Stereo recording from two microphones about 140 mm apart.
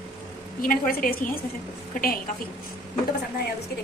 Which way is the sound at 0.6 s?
85° left.